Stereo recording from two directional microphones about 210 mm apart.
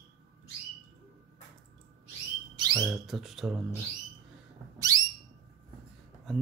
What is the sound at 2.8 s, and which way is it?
Speech, centre (ahead or behind).